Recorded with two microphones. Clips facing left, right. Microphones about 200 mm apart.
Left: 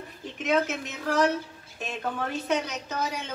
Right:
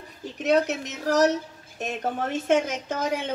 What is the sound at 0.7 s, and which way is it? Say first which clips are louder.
A woman's voice: right 4 dB; 40° right (ahead or behind).